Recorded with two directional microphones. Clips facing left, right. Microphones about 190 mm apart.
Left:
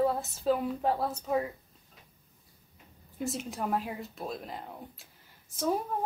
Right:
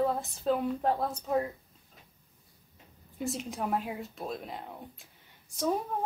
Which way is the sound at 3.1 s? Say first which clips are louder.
Even; centre (ahead or behind).